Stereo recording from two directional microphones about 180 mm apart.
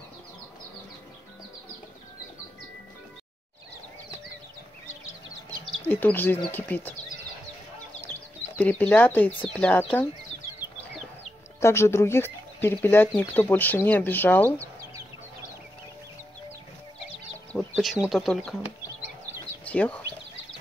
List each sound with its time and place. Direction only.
5.9 s speech: 10° left (ahead or behind)
8.0 s speech: 10° left (ahead or behind)
11.6 s speech: 15° left (ahead or behind)
17.5 s speech: 5° left (ahead or behind)
19.6 s speech: 10° left (ahead or behind)